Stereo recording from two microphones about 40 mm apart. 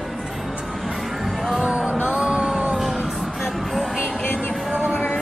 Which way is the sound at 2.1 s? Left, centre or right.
Right.